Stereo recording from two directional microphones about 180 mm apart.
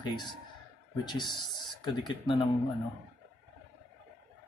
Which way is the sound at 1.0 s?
25° left (ahead or behind).